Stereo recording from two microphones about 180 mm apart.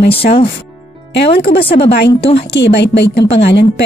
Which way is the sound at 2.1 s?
30° left (ahead or behind).